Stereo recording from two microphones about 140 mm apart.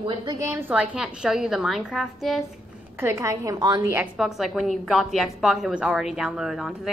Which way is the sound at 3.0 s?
20° right (ahead or behind).